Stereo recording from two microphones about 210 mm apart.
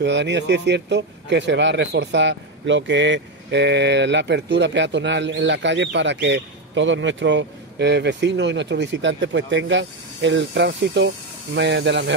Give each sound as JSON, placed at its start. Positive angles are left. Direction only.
{"t": 0.0, "sound": "speech", "side_deg": -55}